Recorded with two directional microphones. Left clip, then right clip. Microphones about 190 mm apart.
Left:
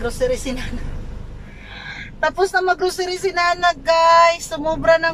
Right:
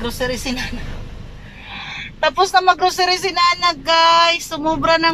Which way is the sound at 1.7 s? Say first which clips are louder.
Right 4 dB; centre (ahead or behind).